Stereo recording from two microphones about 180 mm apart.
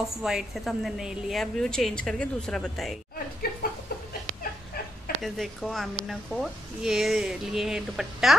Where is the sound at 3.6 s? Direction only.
60° left (ahead or behind).